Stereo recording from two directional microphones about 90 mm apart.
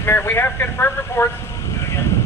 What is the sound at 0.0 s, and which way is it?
A man's voice, 25° left (ahead or behind).